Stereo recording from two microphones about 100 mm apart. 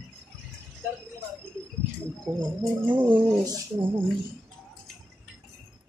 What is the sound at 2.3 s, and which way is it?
Speech, 5° right (ahead or behind).